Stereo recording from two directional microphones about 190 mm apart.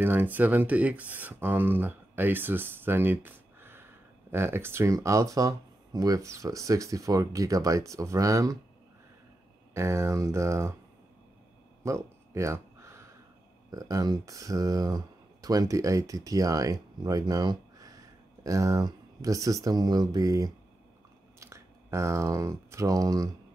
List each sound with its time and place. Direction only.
0.0 s speech: 10° right (ahead or behind)
9.8 s speech: 15° right (ahead or behind)
11.8 s a sound: 15° right (ahead or behind)
13.7 s speech: 20° right (ahead or behind)